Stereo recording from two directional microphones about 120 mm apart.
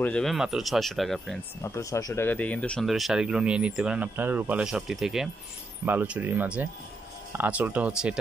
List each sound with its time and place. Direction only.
0.0 s speech: 5° left (ahead or behind)
1.6 s speech: 25° left (ahead or behind)
2.2 s speech: 10° left (ahead or behind)
2.8 s speech: centre (ahead or behind)